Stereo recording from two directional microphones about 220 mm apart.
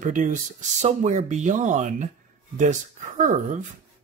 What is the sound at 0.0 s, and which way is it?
Speech, 35° right (ahead or behind).